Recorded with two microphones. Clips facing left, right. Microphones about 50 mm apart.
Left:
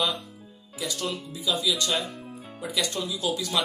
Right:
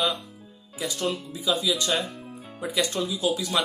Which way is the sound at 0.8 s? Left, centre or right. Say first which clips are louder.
Right 3 dB; right.